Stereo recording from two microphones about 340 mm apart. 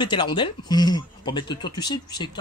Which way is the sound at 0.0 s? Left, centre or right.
Centre.